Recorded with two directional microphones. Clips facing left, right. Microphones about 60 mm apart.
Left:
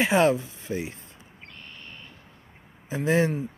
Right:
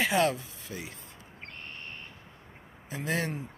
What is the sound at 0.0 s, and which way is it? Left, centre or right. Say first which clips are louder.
Speech: left 5 dB; left.